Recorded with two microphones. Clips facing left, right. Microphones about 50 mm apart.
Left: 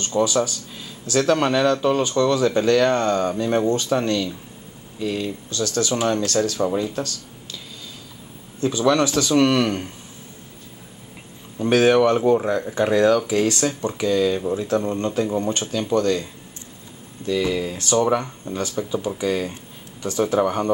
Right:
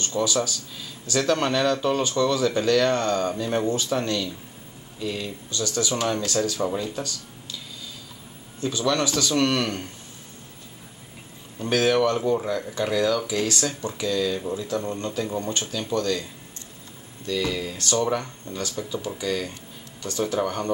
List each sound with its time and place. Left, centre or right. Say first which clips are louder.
0.0 s speech: left 4 dB; centre
5.5 s speech: left 3 dB; centre
8.6 s speech: left 5 dB; centre
11.5 s speech: left 5 dB; centre
13.5 s speech: left 5 dB; centre
14.0 s speech: left 5 dB; left
14.8 s speech: left 6 dB; centre
17.3 s speech: left 5 dB; centre